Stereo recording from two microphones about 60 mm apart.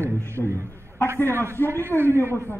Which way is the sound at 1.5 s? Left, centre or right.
Left.